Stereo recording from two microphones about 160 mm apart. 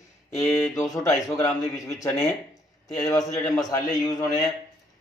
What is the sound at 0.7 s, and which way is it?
Speech, 20° left (ahead or behind).